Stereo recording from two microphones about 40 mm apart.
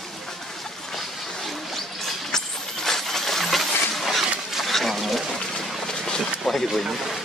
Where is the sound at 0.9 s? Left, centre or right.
Centre.